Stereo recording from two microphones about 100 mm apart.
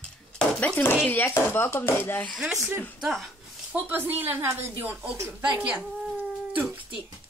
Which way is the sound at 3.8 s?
20° right (ahead or behind).